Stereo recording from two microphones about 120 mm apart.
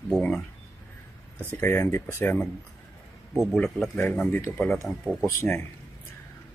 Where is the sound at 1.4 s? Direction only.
20° left (ahead or behind).